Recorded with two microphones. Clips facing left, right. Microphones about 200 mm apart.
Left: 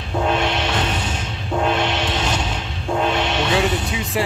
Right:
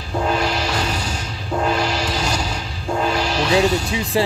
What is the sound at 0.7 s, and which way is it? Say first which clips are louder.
Music: left 1 dB; 25° left (ahead or behind).